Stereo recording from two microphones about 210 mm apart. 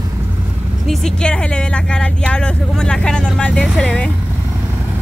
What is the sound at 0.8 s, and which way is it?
Speech, 5° left (ahead or behind).